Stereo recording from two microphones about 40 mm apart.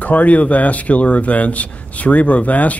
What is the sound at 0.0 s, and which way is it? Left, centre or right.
Speech, left.